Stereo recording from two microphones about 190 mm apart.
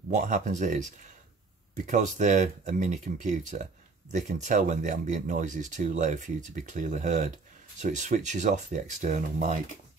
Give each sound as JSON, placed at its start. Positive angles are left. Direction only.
{"t": 0.1, "sound": "speech", "side_deg": -40}
{"t": 1.9, "sound": "speech", "side_deg": -40}